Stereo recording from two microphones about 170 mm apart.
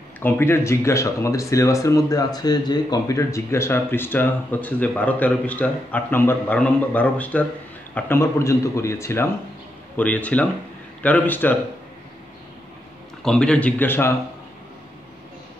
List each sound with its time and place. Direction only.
0.2 s speech: 15° left (ahead or behind)
13.2 s speech: 5° left (ahead or behind)